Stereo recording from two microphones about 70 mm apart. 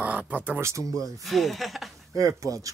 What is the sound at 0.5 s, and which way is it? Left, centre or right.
Speech, right.